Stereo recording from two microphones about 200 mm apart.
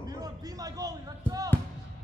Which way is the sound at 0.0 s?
20° right (ahead or behind).